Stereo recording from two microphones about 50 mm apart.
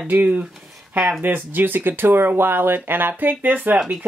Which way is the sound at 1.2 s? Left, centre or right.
Right.